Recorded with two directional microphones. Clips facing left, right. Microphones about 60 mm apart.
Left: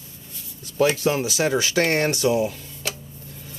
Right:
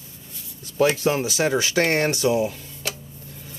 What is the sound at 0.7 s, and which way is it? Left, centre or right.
Speech, right.